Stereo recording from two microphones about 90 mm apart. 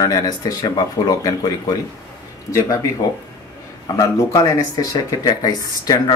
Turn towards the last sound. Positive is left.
turn(degrees=45)  # may be behind; listen again after turning